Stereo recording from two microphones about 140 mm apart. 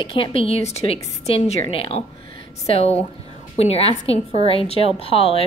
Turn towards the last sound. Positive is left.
turn(degrees=45)  # may be behind; listen again after turning